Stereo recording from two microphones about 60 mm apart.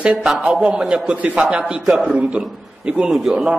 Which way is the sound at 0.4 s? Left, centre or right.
Centre.